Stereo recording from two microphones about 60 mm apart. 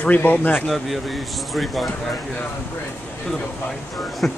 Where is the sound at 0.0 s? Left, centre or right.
Left.